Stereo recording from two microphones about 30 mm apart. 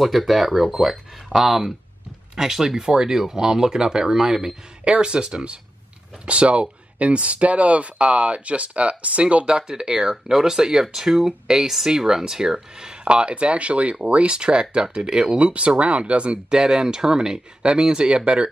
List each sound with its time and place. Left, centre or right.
0.0 s speech: centre
4.8 s speech: right
9.7 s speech: right
13.0 s speech: right
16.4 s speech: right